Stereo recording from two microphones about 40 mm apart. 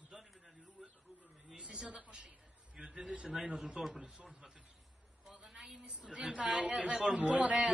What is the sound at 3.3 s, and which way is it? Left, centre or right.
A man's voice, centre.